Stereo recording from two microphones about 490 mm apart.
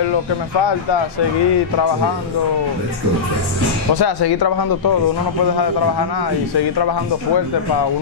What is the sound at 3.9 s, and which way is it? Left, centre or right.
Speech, left.